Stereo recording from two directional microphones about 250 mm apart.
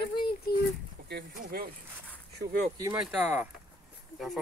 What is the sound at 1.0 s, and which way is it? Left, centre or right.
Boat, right.